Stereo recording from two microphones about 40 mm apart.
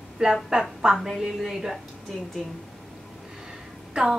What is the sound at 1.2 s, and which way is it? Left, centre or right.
Speech, centre.